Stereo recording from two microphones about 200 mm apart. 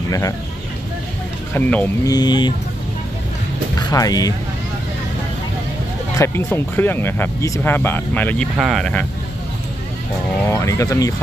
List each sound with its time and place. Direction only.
1.5 s speech: 10° left (ahead or behind)
2.1 s speech: 20° left (ahead or behind)
3.9 s speech: 20° left (ahead or behind)
6.1 s speech: 10° left (ahead or behind)
10.5 s speech: 15° left (ahead or behind)